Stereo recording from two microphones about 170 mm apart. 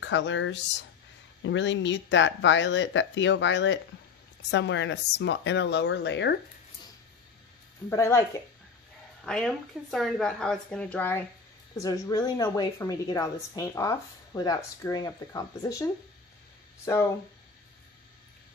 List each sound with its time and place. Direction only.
0.0 s speech: 90° left
7.9 s speech: 15° left (ahead or behind)
9.2 s a woman's voice: 5° left (ahead or behind)